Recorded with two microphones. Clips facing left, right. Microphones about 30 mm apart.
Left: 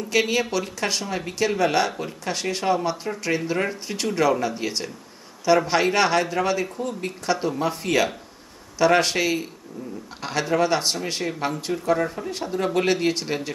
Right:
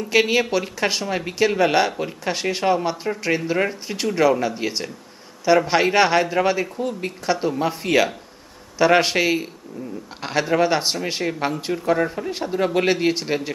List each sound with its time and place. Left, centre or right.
0.1 s speech: centre